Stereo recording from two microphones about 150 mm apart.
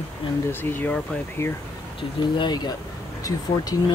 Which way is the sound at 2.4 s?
30° left (ahead or behind).